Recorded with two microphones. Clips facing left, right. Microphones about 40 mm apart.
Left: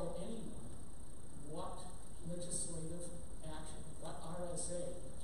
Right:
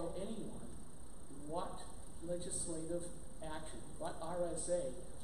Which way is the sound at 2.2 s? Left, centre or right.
Right.